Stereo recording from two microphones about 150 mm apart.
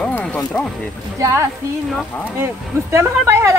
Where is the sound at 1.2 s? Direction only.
20° right (ahead or behind).